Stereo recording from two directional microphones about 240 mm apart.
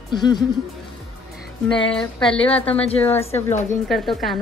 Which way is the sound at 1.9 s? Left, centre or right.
Centre.